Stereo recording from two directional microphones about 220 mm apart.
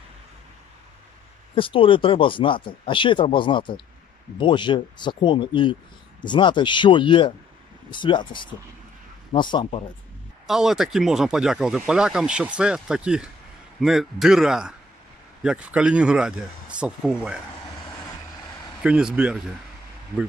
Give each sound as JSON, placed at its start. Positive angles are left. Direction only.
{"t": 1.5, "sound": "speech", "side_deg": 25}
{"t": 10.4, "sound": "speech", "side_deg": 0}
{"t": 18.8, "sound": "speech", "side_deg": -5}